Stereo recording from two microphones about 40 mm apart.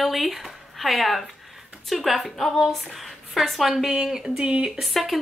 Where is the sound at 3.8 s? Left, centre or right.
Centre.